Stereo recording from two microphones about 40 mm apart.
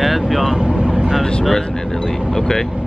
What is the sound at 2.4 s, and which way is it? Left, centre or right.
Speech, centre.